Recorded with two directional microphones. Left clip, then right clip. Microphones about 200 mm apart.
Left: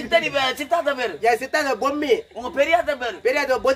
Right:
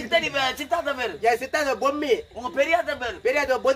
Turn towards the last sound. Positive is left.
turn(degrees=5)  # may be behind; listen again after turning